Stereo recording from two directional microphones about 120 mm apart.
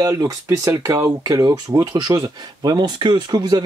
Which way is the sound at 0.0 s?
30° right (ahead or behind).